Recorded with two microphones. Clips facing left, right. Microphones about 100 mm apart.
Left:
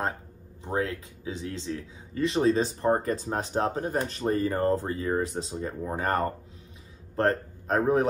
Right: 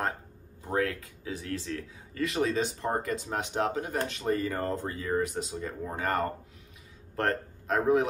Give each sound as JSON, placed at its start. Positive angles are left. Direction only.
{"t": 0.7, "sound": "a man's voice", "side_deg": 25}